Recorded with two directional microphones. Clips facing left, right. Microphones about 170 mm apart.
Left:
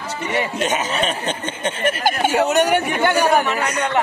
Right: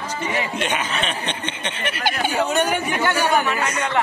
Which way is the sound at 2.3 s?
70° left (ahead or behind).